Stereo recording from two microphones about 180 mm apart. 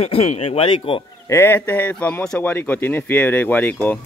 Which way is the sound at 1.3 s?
10° left (ahead or behind).